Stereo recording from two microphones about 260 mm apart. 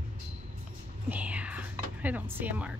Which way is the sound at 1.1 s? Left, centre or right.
Centre.